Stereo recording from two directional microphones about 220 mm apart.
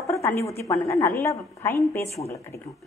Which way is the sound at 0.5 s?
15° left (ahead or behind).